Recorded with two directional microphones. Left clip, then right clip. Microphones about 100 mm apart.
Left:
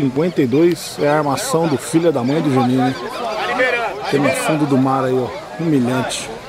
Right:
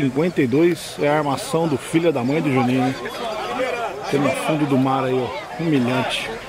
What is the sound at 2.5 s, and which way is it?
Speech, 5° left (ahead or behind).